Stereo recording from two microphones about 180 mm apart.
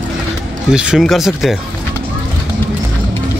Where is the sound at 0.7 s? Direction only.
5° right (ahead or behind).